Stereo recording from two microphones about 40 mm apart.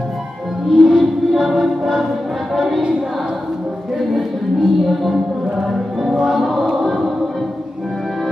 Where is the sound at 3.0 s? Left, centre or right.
Centre.